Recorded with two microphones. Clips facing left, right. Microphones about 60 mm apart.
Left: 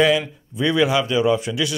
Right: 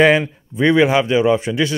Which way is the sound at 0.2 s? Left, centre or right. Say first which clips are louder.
Right 5 dB; right.